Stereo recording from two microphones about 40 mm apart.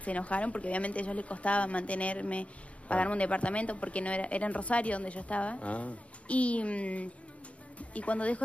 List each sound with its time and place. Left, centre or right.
0.0 s speech: left